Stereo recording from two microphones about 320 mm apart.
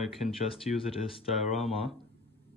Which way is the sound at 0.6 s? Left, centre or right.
Left.